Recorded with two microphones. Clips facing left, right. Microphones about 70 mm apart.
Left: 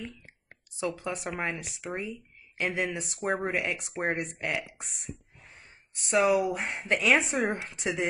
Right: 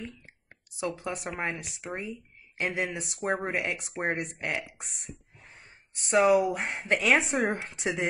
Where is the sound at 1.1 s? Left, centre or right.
Centre.